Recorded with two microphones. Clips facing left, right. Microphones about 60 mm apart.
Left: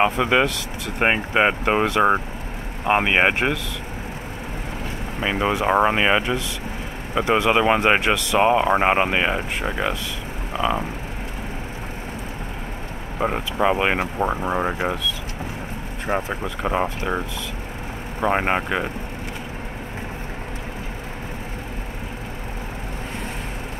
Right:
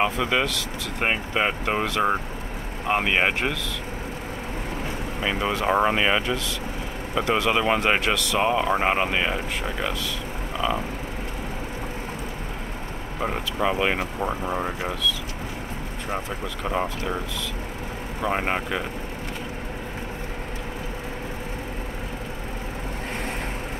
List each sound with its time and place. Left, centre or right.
0.0 s speech: left
5.2 s speech: centre
13.2 s speech: left
16.6 s speech: left
18.2 s speech: left